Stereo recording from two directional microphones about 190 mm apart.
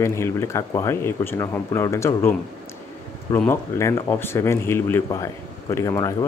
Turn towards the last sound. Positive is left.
turn(degrees=15)  # may be behind; listen again after turning